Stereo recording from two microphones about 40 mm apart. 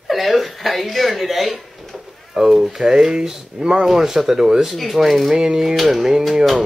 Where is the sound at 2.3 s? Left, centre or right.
Centre.